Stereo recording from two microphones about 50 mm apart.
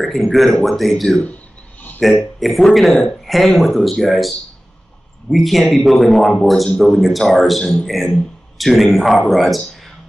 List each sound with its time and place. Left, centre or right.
0.1 s speech: centre
1.1 s a sound: left
2.0 s speech: centre